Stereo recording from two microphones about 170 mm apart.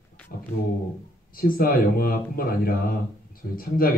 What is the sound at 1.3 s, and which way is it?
Speech, 60° left (ahead or behind).